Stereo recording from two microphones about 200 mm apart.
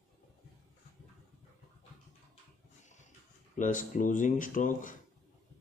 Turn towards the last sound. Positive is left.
turn(degrees=40)  # may be behind; listen again after turning